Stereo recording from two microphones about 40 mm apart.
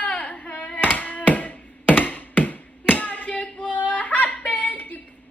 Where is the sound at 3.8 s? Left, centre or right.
Left.